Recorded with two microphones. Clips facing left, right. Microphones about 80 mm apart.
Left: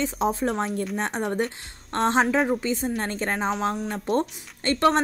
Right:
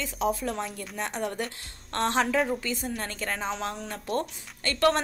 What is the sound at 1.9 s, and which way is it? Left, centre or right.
A woman's voice, left.